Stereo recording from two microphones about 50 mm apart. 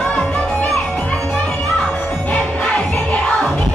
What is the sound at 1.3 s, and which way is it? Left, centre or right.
Music, centre.